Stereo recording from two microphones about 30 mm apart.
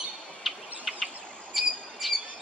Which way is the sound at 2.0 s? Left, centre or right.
Centre.